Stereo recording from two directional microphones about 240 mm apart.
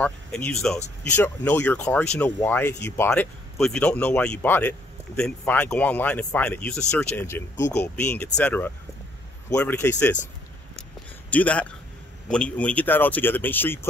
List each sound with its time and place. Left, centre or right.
0.0 s speech: centre
7.5 s speech: left
7.8 s speech: centre
10.8 s a sound: centre
12.3 s speech: centre